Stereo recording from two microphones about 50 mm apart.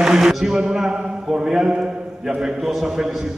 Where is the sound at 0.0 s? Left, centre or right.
Centre.